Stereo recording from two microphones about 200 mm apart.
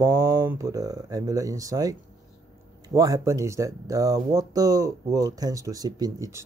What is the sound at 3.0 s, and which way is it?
Speech, 15° right (ahead or behind).